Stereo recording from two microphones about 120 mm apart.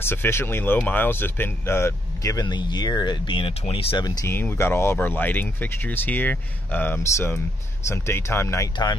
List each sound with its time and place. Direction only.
0.0 s speech: 20° left (ahead or behind)
2.4 s speech: 40° left (ahead or behind)
4.3 s speech: 20° left (ahead or behind)